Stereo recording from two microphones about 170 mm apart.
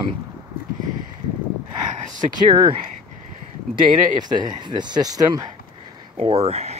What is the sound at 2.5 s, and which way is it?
Speech, 25° right (ahead or behind).